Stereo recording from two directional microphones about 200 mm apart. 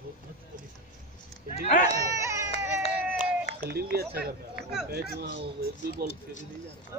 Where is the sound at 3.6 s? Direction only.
50° right (ahead or behind).